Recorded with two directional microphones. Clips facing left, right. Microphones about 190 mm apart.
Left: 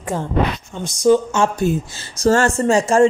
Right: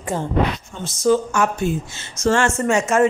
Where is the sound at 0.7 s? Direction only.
15° left (ahead or behind).